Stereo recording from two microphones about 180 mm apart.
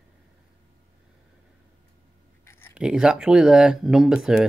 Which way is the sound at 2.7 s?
5° right (ahead or behind).